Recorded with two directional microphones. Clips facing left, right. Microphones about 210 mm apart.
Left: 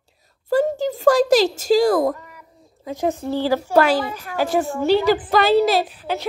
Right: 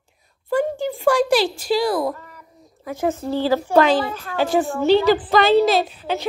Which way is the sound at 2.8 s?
15° left (ahead or behind).